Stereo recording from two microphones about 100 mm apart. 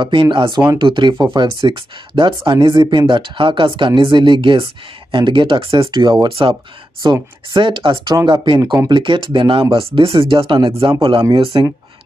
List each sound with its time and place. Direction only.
0.0 s speech: 55° right (ahead or behind)
6.2 s speech: 65° right (ahead or behind)
7.0 s speech: 45° right (ahead or behind)
11.0 s speech: 70° right (ahead or behind)